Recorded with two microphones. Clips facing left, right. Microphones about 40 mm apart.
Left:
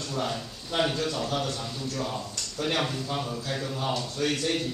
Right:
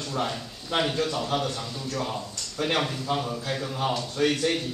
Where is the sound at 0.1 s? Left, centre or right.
Centre.